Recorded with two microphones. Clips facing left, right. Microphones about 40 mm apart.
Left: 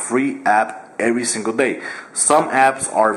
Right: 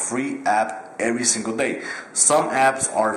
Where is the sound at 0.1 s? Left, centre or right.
Centre.